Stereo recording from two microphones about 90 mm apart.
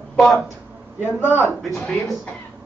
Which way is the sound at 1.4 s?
Centre (ahead or behind).